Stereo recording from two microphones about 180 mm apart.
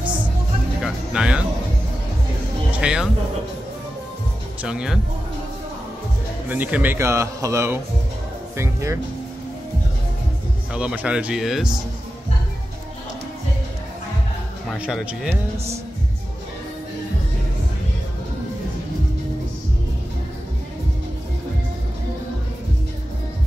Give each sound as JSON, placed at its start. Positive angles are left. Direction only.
{"t": 0.8, "sound": "music", "side_deg": -5}
{"t": 2.8, "sound": "speech", "side_deg": -5}
{"t": 4.6, "sound": "speech", "side_deg": -5}
{"t": 6.5, "sound": "speech", "side_deg": -10}
{"t": 10.7, "sound": "speech", "side_deg": -5}
{"t": 14.8, "sound": "speech", "side_deg": -5}